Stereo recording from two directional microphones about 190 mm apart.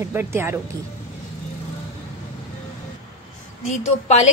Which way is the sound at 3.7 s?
35° left (ahead or behind).